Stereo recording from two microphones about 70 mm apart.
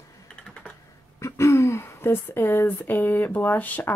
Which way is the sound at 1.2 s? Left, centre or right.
Left.